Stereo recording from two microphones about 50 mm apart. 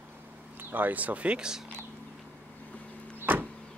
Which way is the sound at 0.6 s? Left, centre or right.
Right.